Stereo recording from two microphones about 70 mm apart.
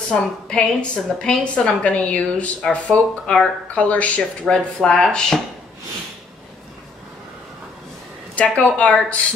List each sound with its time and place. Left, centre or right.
0.1 s speech: centre
8.4 s a woman's voice: centre